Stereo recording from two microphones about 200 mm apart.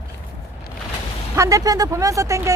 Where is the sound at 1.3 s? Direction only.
15° right (ahead or behind).